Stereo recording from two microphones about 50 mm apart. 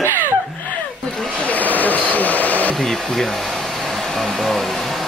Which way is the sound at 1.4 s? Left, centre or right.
Left.